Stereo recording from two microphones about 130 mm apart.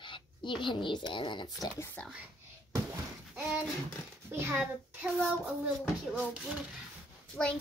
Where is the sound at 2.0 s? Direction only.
10° left (ahead or behind).